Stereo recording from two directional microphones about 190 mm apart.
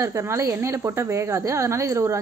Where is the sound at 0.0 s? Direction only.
15° right (ahead or behind).